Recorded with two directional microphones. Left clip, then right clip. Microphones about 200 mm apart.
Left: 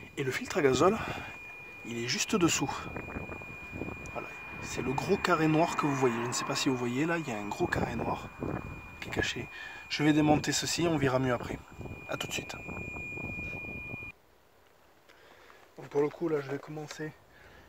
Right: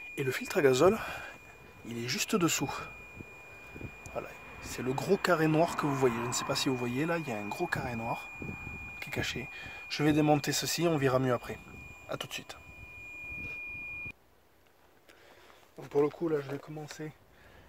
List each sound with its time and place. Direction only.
0.1 s speech: 5° right (ahead or behind)
4.0 s speech: 5° right (ahead or behind)
15.8 s a sound: 30° right (ahead or behind)
16.1 s speech: 20° right (ahead or behind)